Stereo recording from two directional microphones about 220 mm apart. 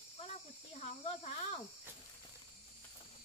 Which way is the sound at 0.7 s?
30° left (ahead or behind).